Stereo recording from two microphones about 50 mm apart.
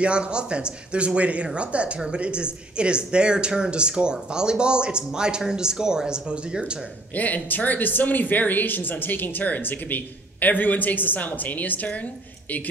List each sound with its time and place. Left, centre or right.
0.0 s speech: right
7.2 s speech: left